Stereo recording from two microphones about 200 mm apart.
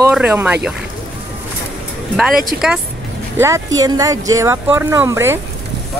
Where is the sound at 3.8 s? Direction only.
15° right (ahead or behind).